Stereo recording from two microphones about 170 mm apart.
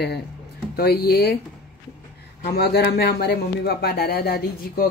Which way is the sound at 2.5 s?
70° left (ahead or behind).